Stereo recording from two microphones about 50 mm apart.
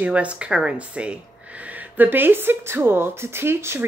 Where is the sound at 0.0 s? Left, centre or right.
Right.